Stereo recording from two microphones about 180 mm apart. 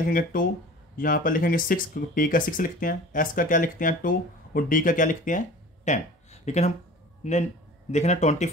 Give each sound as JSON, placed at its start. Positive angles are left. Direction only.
{"t": 0.0, "sound": "speech", "side_deg": 50}
{"t": 5.9, "sound": "a sound", "side_deg": 40}
{"t": 7.2, "sound": "speech", "side_deg": 40}